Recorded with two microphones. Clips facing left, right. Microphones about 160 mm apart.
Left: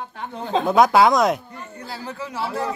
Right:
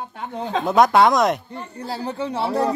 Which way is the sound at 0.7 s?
Centre (ahead or behind).